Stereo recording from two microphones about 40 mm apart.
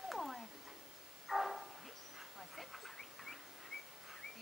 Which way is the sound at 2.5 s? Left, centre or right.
Centre.